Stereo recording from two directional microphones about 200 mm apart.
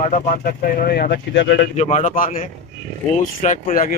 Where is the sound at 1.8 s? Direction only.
35° left (ahead or behind).